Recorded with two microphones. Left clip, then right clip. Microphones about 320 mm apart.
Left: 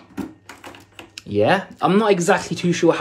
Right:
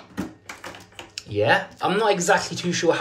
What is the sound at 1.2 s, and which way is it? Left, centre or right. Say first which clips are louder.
Speech: left 2 dB; centre.